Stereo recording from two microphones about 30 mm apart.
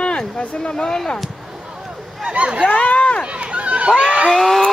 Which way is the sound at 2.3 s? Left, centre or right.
Right.